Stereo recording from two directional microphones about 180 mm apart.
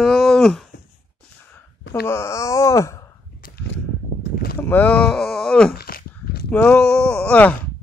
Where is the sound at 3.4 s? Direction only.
60° left (ahead or behind).